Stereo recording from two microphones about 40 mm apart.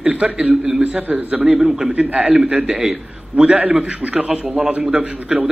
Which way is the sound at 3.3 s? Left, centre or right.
Right.